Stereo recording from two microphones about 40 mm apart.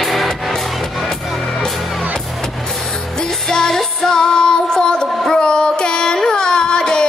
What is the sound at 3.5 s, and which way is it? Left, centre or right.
Music, centre.